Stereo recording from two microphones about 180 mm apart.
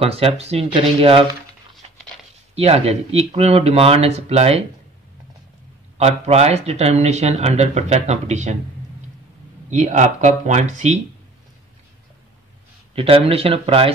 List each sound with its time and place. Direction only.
0.0 s speech: 30° right (ahead or behind)
2.5 s speech: 35° right (ahead or behind)
5.9 s speech: 35° right (ahead or behind)
9.7 s speech: 40° right (ahead or behind)
12.9 s speech: 30° right (ahead or behind)